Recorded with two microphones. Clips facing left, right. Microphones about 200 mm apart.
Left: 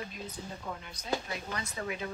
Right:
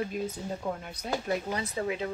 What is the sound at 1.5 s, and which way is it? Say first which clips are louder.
Speech: right 6 dB; 30° right (ahead or behind).